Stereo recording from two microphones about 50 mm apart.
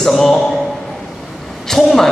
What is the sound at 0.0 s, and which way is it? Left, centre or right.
Speech, centre.